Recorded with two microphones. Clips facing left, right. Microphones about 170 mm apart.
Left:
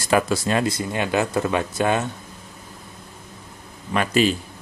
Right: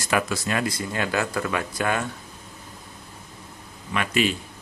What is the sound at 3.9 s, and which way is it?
Speech, 35° left (ahead or behind).